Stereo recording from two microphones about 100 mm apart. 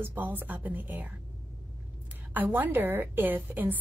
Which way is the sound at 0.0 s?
20° right (ahead or behind).